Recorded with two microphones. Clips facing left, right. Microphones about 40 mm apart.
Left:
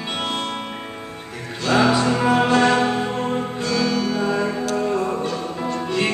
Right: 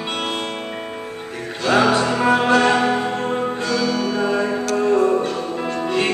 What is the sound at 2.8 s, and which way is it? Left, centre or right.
Music, right.